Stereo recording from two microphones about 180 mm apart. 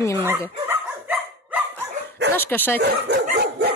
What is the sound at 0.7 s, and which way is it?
Dog, 10° right (ahead or behind).